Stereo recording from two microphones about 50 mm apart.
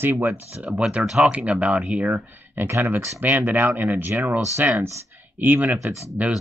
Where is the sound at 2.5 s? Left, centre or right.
Right.